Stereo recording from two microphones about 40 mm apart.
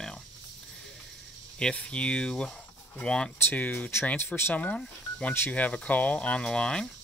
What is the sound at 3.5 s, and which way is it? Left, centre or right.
Speech, left.